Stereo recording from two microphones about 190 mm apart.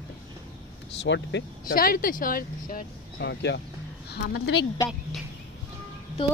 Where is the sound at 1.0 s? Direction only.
70° left (ahead or behind).